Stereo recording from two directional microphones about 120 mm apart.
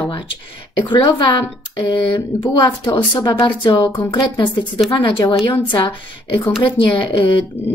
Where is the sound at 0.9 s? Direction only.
40° left (ahead or behind).